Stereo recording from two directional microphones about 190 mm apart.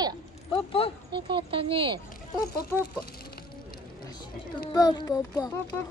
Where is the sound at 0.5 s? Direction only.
30° left (ahead or behind).